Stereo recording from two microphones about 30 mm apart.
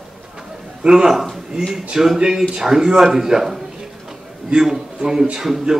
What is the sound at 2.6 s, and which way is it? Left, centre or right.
Speech, centre.